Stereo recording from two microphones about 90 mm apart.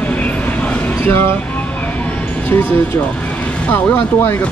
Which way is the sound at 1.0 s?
25° left (ahead or behind).